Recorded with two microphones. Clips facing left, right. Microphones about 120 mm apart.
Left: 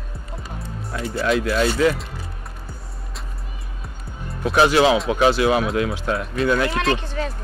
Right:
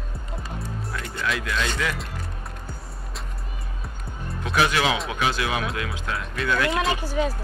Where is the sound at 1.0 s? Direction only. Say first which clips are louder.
Left 12 dB; 5° left (ahead or behind).